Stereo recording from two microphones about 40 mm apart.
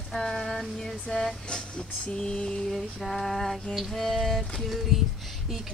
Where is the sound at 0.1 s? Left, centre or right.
Centre.